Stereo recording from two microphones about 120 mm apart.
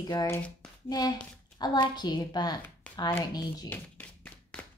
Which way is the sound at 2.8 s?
10° left (ahead or behind).